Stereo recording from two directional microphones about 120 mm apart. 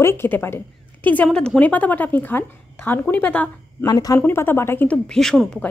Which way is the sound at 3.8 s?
30° left (ahead or behind).